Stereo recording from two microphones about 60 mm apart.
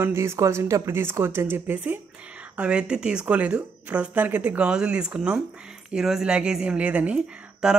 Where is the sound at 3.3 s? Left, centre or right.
Right.